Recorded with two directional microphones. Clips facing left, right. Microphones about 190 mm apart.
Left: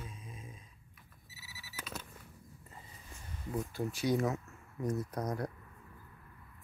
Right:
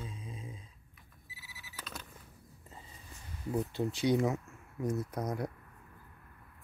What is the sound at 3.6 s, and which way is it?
Speech, 25° right (ahead or behind).